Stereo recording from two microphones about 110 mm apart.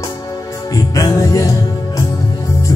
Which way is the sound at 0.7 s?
35° left (ahead or behind).